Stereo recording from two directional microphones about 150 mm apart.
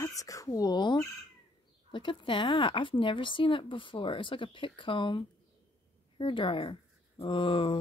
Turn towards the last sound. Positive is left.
turn(degrees=35)  # may be behind; listen again after turning